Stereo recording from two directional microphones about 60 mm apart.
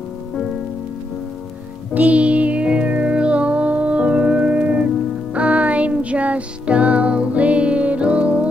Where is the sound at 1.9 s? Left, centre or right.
Right.